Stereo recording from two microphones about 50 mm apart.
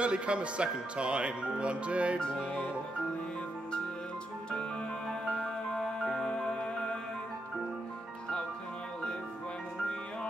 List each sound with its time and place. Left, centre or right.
0.0 s speech: right
5.3 s music: centre